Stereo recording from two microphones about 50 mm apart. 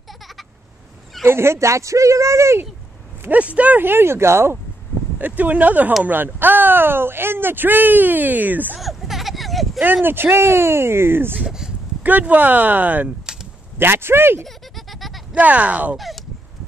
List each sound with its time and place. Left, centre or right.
1.2 s speech: right
3.3 s speech: right
3.8 s speech: right
5.2 s speech: right
8.7 s a sound: centre
10.0 s speech: right
11.4 s a sound: centre
12.0 s speech: right
13.7 s speech: right
14.4 s a sound: centre
15.3 s speech: right